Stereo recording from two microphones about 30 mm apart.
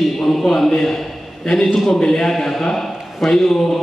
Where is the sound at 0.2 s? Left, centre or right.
Centre.